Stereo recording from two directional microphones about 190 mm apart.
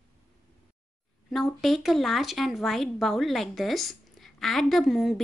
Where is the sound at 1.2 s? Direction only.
Centre (ahead or behind).